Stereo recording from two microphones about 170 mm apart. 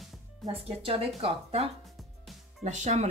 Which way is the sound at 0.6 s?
35° right (ahead or behind).